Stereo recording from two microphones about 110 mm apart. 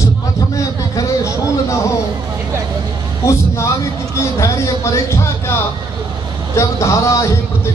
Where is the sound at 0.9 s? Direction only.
30° left (ahead or behind).